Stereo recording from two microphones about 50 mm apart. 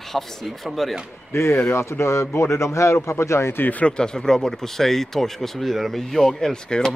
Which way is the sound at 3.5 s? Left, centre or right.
Left.